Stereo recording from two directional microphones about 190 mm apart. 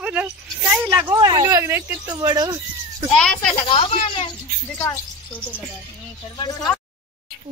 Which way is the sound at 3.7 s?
25° left (ahead or behind).